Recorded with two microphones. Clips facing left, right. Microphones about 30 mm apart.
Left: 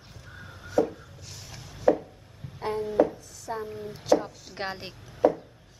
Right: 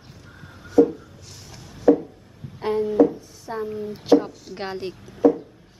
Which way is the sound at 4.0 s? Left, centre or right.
Right.